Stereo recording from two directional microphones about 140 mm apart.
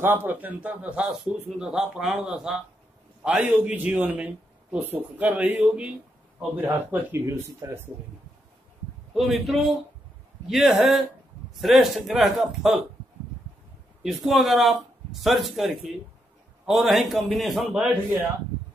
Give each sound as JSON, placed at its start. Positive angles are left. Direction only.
{"t": 0.0, "sound": "speech", "side_deg": -15}
{"t": 9.1, "sound": "speech", "side_deg": 0}
{"t": 14.0, "sound": "speech", "side_deg": 0}